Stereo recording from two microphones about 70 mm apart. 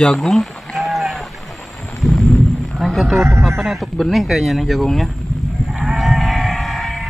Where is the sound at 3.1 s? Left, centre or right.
Right.